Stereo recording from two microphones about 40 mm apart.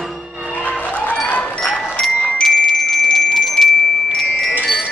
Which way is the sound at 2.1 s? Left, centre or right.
Left.